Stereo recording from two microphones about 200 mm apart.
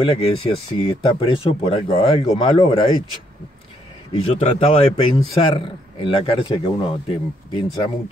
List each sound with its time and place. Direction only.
0.0 s speech: 25° left (ahead or behind)
4.1 s speech: 30° left (ahead or behind)